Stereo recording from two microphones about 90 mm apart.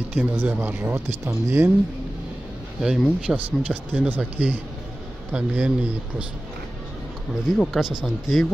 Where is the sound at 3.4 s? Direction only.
15° right (ahead or behind).